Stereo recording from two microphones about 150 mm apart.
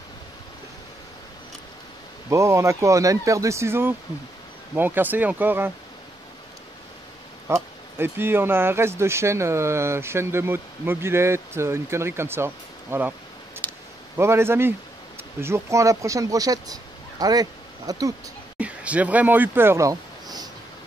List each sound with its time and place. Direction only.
2.2 s speech: 20° right (ahead or behind)
7.4 s speech: 15° right (ahead or behind)
13.6 s a sound: 15° left (ahead or behind)
14.1 s a man's voice: 15° right (ahead or behind)
18.6 s speech: 10° right (ahead or behind)